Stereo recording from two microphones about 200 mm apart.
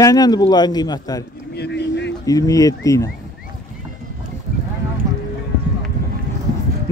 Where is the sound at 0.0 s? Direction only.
20° left (ahead or behind).